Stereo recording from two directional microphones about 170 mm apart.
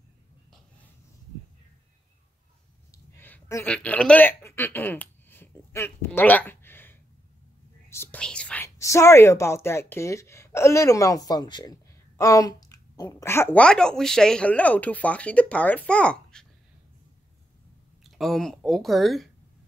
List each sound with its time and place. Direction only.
2.9 s a sound: 10° left (ahead or behind)
3.7 s speech: 5° left (ahead or behind)
7.9 s whispering: 10° left (ahead or behind)
8.6 s speech: 15° left (ahead or behind)
18.1 s speech: centre (ahead or behind)